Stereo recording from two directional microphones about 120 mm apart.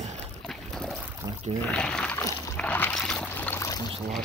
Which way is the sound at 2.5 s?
10° left (ahead or behind).